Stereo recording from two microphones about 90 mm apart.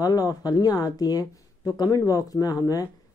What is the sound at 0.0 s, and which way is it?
Speech, 45° left (ahead or behind).